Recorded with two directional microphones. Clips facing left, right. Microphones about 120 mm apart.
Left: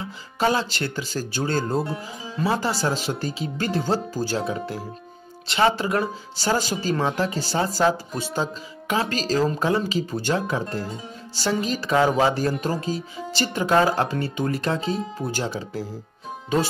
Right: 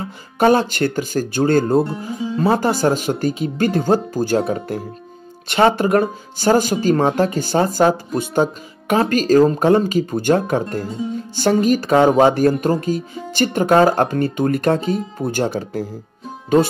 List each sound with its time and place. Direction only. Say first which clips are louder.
0.0 s speech: right 7 dB; 55° right (ahead or behind)